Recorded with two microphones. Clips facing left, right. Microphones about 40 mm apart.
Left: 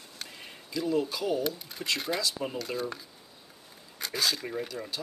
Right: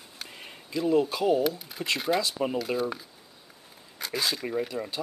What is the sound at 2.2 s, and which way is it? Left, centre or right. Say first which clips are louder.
Speech: right 4 dB; right.